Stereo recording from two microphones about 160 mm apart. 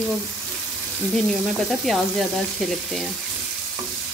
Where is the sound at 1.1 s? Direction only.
Centre (ahead or behind).